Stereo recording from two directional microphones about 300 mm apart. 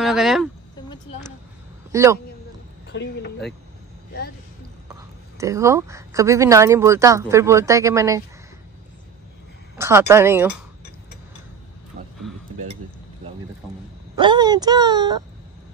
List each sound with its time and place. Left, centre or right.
0.0 s speech: centre
1.9 s speech: centre
2.9 s speech: left
5.4 s speech: centre
9.8 s speech: centre
14.1 s speech: centre